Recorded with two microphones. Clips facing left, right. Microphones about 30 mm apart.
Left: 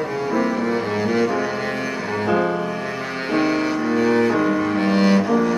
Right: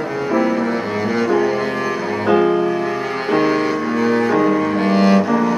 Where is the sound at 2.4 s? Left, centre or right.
Right.